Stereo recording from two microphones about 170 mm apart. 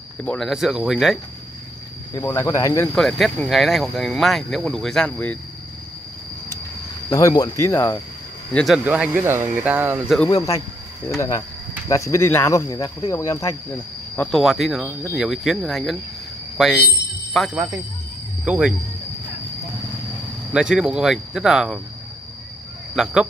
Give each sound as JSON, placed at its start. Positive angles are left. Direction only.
{"t": 0.2, "sound": "speech", "side_deg": 5}
{"t": 2.1, "sound": "speech", "side_deg": 20}
{"t": 2.9, "sound": "speech", "side_deg": 0}
{"t": 7.1, "sound": "speech", "side_deg": 20}
{"t": 8.5, "sound": "speech", "side_deg": -5}
{"t": 10.3, "sound": "speech", "side_deg": 20}
{"t": 11.9, "sound": "speech", "side_deg": 15}
{"t": 14.1, "sound": "speech", "side_deg": 5}
{"t": 20.5, "sound": "speech", "side_deg": -5}